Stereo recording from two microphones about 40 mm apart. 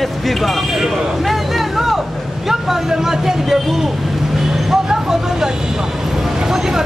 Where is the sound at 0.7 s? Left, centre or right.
Centre.